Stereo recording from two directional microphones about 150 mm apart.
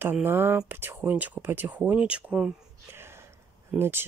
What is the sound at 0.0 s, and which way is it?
Speech, 15° right (ahead or behind).